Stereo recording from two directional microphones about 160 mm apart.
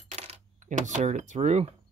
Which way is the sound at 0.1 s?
45° right (ahead or behind).